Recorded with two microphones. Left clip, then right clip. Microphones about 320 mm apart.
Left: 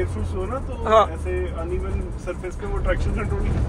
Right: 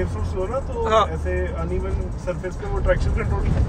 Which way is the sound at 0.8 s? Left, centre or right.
Centre.